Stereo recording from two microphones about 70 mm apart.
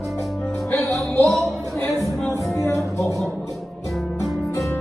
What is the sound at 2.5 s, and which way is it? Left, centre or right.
Music, left.